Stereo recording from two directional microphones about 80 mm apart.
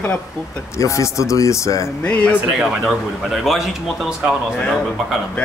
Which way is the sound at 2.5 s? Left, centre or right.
Centre.